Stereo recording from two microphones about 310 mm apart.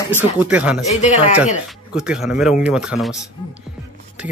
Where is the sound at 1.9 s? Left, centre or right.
Centre.